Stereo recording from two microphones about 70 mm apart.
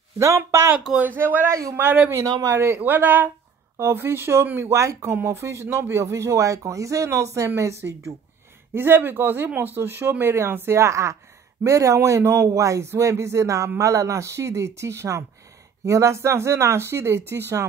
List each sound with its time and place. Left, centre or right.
0.5 s speech: right
1.1 s speech: right
1.5 s speech: right
2.8 s speech: right
8.7 s speech: right
10.8 s speech: right